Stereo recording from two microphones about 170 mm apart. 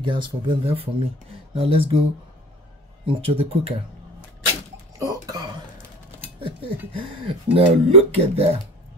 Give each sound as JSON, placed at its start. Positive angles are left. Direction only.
{"t": 0.0, "sound": "speech", "side_deg": -30}
{"t": 3.1, "sound": "speech", "side_deg": -35}
{"t": 4.9, "sound": "burping", "side_deg": -20}
{"t": 6.4, "sound": "speech", "side_deg": -30}